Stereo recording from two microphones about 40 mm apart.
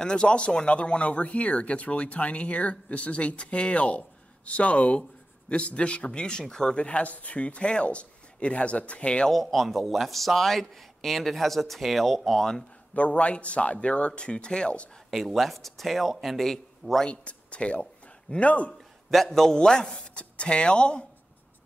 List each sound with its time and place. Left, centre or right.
0.0 s a man's voice: left
6.8 s speech: left
9.3 s speech: centre
12.9 s a man's voice: left
15.0 s speech: centre
17.1 s speech: left
18.7 s a sound: centre
19.2 s a man's voice: centre